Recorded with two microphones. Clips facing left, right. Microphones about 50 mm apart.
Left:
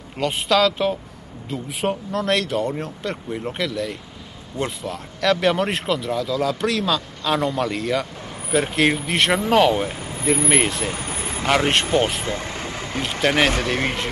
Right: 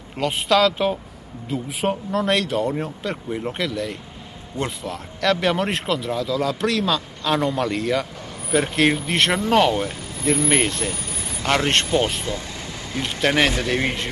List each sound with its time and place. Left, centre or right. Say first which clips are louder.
0.2 s speech: even; centre
10.9 s vehicle: left 3 dB; left
11.4 s speech: left 1 dB; centre
12.3 s vehicle: left 2 dB; left
13.2 s speech: even; centre